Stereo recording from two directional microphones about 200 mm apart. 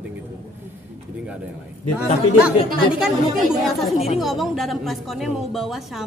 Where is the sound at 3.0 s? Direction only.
Centre (ahead or behind).